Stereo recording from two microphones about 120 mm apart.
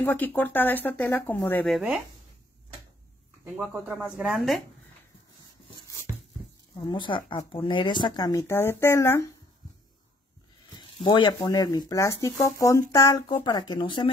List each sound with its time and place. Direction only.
0.0 s speech: 15° left (ahead or behind)
1.7 s speech: centre (ahead or behind)
3.5 s speech: 5° right (ahead or behind)
6.9 s speech: 40° left (ahead or behind); by 9.3 s 20° left (ahead or behind)
10.8 s speech: 40° left (ahead or behind)